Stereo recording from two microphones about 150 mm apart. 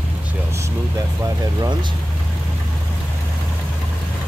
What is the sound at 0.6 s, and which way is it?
Speech, 20° right (ahead or behind).